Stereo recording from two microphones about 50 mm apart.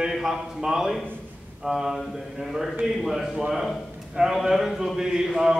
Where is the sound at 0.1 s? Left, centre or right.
Centre.